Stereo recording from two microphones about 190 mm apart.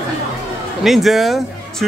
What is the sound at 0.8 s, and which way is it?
Speech, centre (ahead or behind).